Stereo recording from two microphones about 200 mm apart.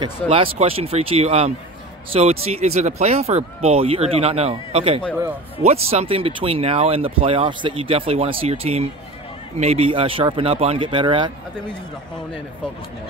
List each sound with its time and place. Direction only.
0.3 s speech: 30° right (ahead or behind)